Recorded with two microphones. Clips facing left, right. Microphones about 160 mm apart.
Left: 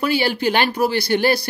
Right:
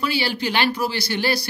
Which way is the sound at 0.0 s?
50° left (ahead or behind).